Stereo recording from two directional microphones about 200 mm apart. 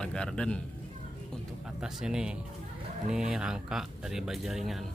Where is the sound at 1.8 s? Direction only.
5° right (ahead or behind).